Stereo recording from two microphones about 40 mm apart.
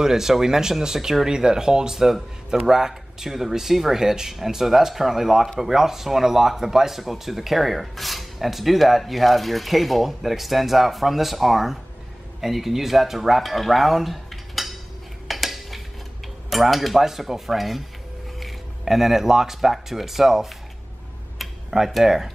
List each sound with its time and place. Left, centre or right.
0.0 s speech: centre
15.2 s a sound: centre
16.4 s speech: centre
21.4 s tick-tock: centre